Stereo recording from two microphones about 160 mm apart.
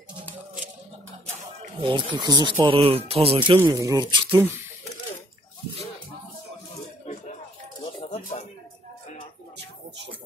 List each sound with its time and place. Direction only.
1.8 s speech: 30° right (ahead or behind)
3.5 s speech: 20° right (ahead or behind)
7.8 s a sound: 45° left (ahead or behind)